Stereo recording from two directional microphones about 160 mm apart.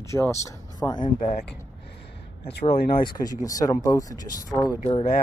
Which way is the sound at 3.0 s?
25° left (ahead or behind).